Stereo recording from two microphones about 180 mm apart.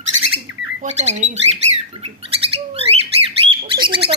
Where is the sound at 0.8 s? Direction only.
40° right (ahead or behind).